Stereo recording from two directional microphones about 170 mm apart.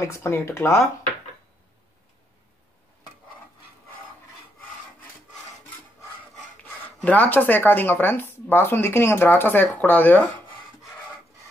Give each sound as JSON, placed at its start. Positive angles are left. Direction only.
{"t": 0.0, "sound": "speech", "side_deg": 15}
{"t": 6.3, "sound": "speech", "side_deg": 5}